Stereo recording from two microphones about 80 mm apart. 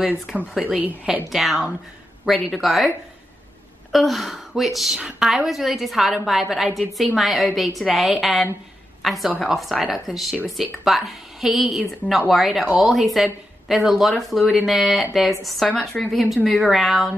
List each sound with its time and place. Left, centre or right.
0.4 s speech: centre
1.3 s speech: centre
3.9 s a woman's voice: centre